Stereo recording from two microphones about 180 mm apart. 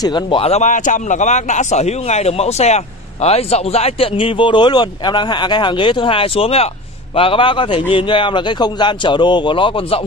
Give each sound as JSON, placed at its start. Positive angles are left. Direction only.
{"t": 0.0, "sound": "a man's voice", "side_deg": 25}